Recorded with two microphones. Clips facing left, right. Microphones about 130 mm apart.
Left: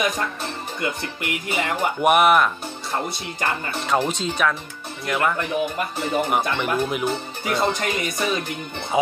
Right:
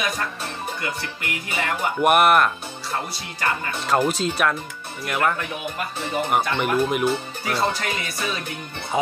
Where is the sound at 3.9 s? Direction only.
5° right (ahead or behind).